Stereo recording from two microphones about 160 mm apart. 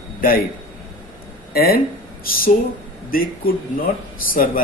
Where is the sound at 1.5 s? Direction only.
70° left (ahead or behind).